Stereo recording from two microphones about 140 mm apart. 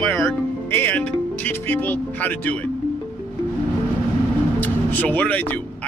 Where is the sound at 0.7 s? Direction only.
15° left (ahead or behind).